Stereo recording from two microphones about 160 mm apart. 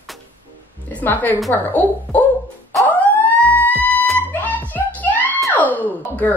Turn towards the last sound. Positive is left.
turn(degrees=10)  # may be behind; listen again after turning